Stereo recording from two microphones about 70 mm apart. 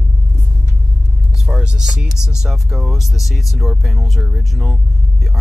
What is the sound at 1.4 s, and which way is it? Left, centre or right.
Speech, centre.